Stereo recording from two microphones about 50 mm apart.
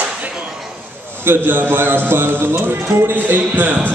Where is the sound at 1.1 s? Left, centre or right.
Right.